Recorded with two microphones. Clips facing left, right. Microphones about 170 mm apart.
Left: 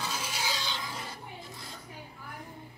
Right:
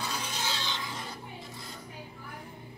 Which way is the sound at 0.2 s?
10° left (ahead or behind).